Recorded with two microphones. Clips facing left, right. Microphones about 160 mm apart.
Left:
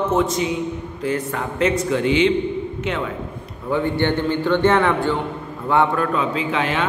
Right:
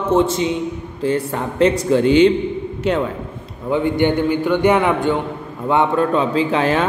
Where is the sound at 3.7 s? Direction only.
15° right (ahead or behind).